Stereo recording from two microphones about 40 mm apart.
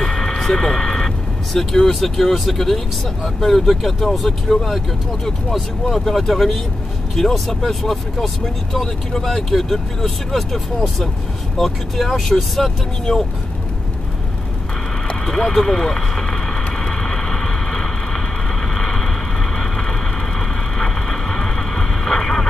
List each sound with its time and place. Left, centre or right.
0.0 s vehicle: centre
0.6 s speech: centre
15.2 s vehicle: centre